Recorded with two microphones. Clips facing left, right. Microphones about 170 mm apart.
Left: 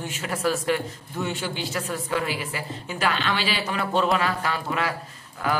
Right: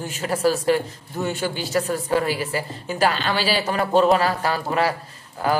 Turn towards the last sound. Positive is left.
turn(degrees=-35)  # may be behind; listen again after turning